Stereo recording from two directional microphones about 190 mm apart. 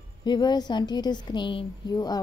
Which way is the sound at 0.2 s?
20° left (ahead or behind).